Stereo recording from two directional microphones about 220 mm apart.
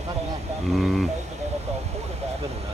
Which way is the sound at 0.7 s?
Centre (ahead or behind).